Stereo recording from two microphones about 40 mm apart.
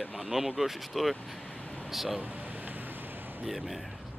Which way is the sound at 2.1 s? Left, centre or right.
Right.